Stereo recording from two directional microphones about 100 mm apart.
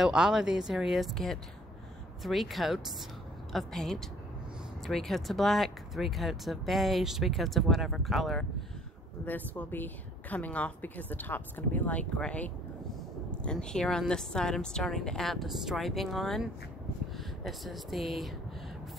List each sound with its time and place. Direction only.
0.0 s speech: 5° right (ahead or behind)
9.2 s speech: 15° left (ahead or behind); by 18.3 s centre (ahead or behind)